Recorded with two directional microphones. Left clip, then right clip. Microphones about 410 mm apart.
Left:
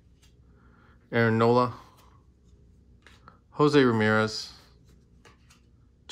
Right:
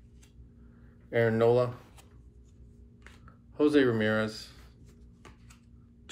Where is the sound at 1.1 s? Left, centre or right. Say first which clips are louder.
Left 2 dB; centre.